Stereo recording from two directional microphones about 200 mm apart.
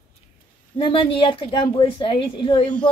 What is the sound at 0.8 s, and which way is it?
A woman's voice, 25° left (ahead or behind).